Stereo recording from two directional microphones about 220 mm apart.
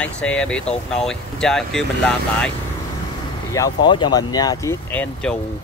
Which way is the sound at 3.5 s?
20° left (ahead or behind).